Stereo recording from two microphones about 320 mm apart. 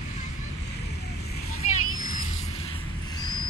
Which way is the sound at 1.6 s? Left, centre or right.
Left.